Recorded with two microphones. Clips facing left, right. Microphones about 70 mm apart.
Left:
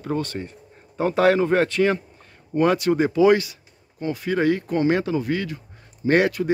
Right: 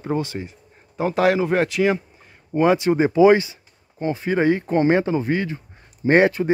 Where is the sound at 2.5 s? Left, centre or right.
Right.